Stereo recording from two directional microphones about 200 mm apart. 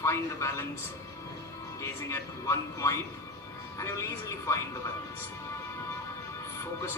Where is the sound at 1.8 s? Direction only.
15° left (ahead or behind).